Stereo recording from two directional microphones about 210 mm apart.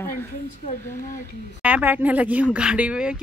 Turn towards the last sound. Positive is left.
turn(degrees=-5)  # may be behind; listen again after turning